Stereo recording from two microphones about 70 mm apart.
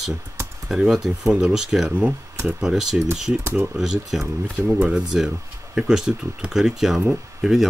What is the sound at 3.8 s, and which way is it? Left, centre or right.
Speech, centre.